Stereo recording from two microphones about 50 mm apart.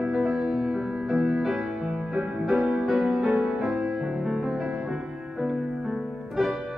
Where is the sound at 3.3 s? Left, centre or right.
Right.